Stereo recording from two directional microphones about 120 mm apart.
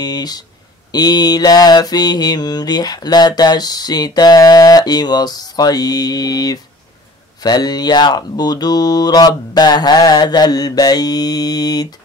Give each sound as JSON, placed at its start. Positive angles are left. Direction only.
{"t": 0.0, "sound": "mantra", "side_deg": 35}